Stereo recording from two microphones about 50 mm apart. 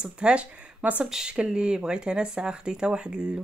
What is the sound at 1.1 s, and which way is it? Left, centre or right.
Speech, centre.